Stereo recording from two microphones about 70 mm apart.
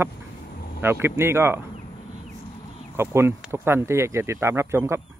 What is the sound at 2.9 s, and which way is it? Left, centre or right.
A man's voice, right.